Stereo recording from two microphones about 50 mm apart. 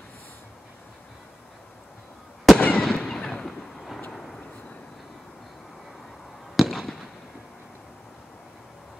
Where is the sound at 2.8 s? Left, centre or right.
Centre.